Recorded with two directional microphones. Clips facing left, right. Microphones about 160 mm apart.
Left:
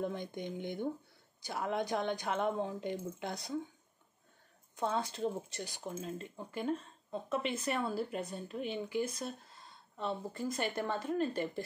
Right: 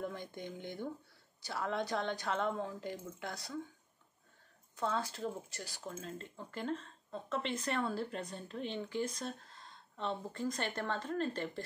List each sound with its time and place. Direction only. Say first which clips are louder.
0.0 s speech: left 4 dB; 20° left (ahead or behind)
4.7 s speech: left 2 dB; 20° left (ahead or behind)